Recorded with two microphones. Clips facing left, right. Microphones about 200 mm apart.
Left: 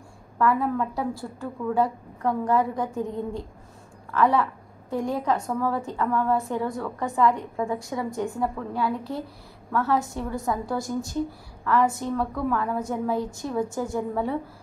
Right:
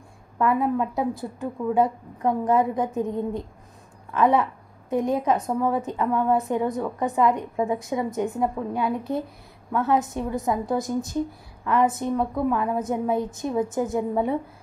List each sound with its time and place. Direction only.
0.4 s a woman's voice: 20° right (ahead or behind)